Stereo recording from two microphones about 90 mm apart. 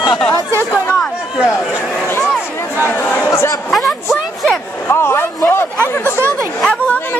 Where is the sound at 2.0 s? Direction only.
25° left (ahead or behind).